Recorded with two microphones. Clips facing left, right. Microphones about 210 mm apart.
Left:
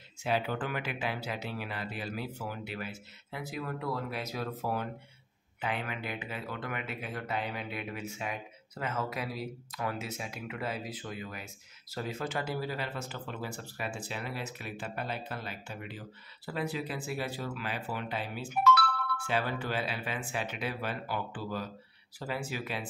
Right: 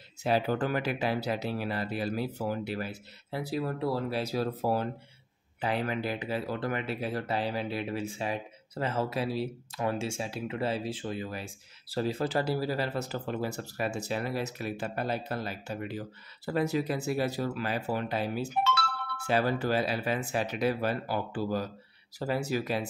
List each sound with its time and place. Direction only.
0.2 s speech: 40° right (ahead or behind)
18.6 s music: 25° right (ahead or behind)
19.1 s speech: 40° right (ahead or behind)